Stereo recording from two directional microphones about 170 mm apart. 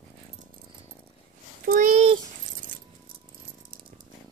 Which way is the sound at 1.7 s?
50° right (ahead or behind).